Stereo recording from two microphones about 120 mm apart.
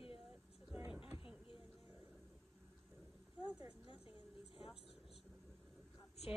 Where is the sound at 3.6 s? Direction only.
45° left (ahead or behind).